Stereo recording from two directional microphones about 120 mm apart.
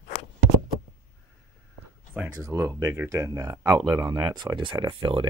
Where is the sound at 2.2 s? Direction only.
25° right (ahead or behind).